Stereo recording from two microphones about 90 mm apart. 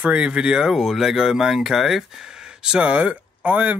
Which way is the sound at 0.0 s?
10° right (ahead or behind).